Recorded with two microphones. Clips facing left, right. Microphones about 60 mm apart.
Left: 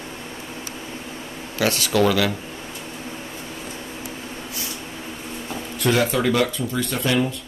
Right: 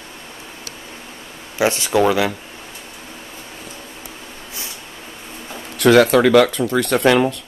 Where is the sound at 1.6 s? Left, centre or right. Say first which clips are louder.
Right 3 dB; right.